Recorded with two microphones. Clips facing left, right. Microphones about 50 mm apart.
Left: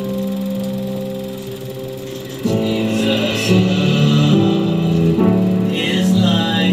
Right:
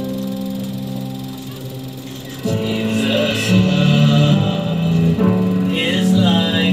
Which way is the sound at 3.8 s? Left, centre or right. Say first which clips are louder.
Right 1 dB; right.